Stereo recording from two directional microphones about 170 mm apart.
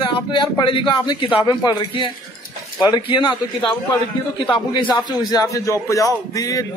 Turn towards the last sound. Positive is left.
turn(degrees=20)  # may be behind; listen again after turning